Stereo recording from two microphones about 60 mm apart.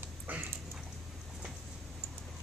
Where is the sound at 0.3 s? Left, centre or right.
Right.